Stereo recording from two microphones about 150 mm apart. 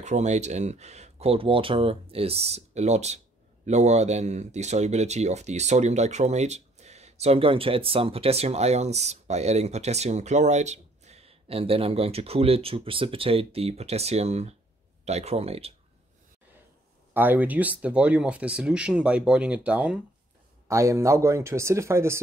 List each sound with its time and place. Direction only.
0.0 s speech: 50° right (ahead or behind)
17.1 s speech: 10° right (ahead or behind)
20.6 s speech: 20° right (ahead or behind)